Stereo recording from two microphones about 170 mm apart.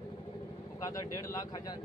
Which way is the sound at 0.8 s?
20° left (ahead or behind).